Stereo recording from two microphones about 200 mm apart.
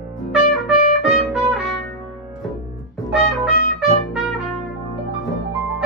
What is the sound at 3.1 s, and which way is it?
Trumpet, centre (ahead or behind).